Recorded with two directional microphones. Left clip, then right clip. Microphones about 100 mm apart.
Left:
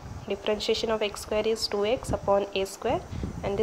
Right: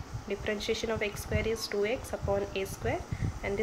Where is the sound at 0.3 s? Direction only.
40° left (ahead or behind).